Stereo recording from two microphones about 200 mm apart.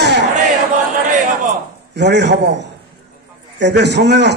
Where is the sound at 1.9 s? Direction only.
60° right (ahead or behind).